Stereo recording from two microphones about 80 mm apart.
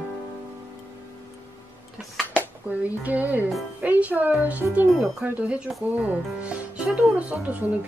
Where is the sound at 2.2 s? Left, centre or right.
Left.